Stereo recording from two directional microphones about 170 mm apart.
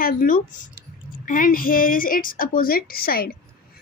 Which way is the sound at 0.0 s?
55° left (ahead or behind).